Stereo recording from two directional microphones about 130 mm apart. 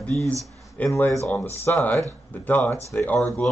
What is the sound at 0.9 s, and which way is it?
Speech, 20° left (ahead or behind).